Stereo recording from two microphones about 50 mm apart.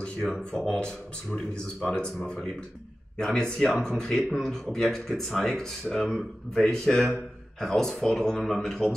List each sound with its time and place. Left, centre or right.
0.3 s speech: centre
3.2 s speech: centre